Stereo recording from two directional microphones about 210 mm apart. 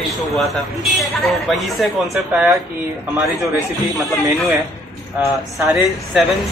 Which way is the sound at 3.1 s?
15° right (ahead or behind).